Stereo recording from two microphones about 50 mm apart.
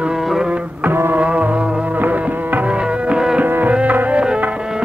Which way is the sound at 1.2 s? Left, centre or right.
Right.